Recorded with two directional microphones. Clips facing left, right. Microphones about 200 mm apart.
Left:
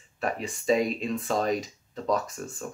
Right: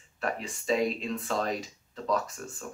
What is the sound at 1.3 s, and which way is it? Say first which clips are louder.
Speech: left 5 dB; 15° left (ahead or behind).